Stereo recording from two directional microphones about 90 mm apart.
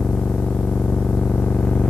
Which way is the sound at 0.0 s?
10° left (ahead or behind).